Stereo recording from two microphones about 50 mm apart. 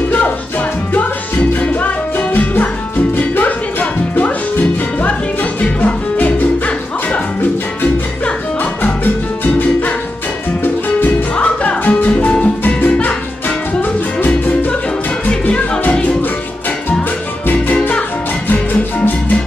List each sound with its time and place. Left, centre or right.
1.6 s music: left
8.8 s music: left
11.3 s music: left
14.2 s music: left
15.2 s music: left
17.7 s music: centre
18.5 s music: left